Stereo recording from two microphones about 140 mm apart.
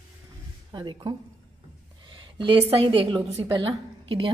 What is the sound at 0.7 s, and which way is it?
A woman's voice, 30° right (ahead or behind).